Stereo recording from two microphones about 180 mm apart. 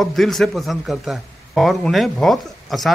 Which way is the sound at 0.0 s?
Centre (ahead or behind).